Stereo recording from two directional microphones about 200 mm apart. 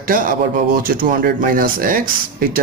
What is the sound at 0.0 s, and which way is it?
Speech, 45° right (ahead or behind).